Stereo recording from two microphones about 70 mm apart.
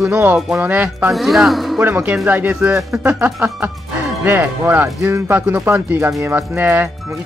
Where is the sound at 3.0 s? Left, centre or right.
Right.